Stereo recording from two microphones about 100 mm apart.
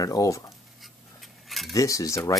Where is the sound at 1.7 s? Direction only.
35° left (ahead or behind).